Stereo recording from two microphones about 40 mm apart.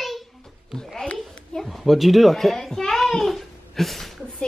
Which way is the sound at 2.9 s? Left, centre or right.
Centre.